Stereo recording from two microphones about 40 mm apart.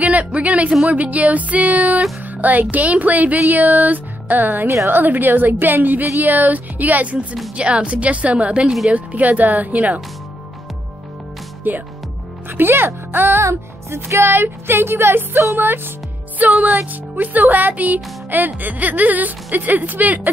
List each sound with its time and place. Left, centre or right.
0.0 s speech: right
2.2 s music: right
4.6 s a woman's voice: right
5.0 s a woman's voice: right
6.2 s music: right
7.5 s speech: right
8.9 s music: right
11.7 s a woman's voice: right
13.8 s speech: right
16.3 s music: right